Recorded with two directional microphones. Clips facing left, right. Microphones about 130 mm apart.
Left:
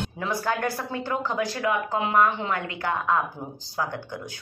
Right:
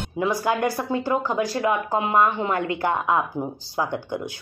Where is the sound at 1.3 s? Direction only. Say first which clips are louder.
Right 3 dB; 30° right (ahead or behind).